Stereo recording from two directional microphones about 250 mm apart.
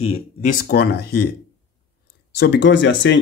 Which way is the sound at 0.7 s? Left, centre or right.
Left.